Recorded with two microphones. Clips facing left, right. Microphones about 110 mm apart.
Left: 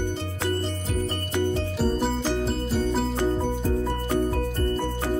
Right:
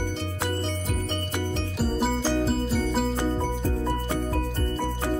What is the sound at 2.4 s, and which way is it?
Music, centre (ahead or behind).